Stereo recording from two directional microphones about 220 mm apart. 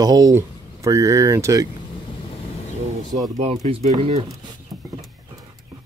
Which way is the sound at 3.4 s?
30° right (ahead or behind).